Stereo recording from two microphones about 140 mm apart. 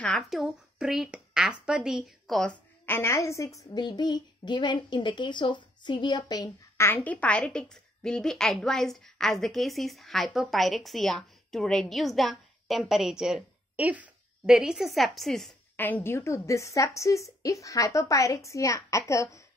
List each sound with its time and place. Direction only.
0.0 s a woman's voice: centre (ahead or behind)
2.9 s a woman's voice: 20° left (ahead or behind)
6.9 s a woman's voice: 10° left (ahead or behind)
15.7 s a woman's voice: 15° left (ahead or behind)